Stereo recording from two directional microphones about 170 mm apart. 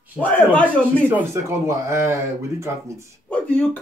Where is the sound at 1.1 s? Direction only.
15° right (ahead or behind).